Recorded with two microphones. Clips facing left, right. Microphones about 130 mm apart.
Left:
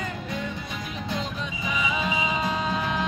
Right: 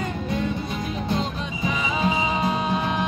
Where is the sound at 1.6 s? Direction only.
35° right (ahead or behind).